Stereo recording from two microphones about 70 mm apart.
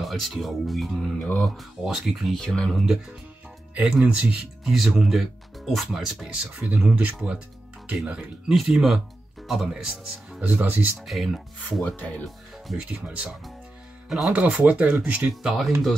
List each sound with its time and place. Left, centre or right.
0.0 s speech: centre
3.8 s speech: centre
6.1 s speech: centre
10.4 s speech: right
11.0 s speech: centre
11.8 s speech: centre
12.7 s speech: centre
14.0 s speech: centre
14.3 s speech: centre
15.4 s speech: centre